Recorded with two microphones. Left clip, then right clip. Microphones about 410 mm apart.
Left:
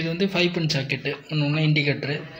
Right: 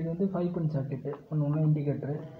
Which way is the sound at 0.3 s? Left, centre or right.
Right.